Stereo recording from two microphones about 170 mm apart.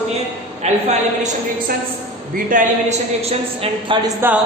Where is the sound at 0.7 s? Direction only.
40° right (ahead or behind).